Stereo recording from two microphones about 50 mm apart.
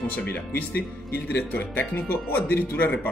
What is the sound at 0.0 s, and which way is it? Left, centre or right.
Speech, left.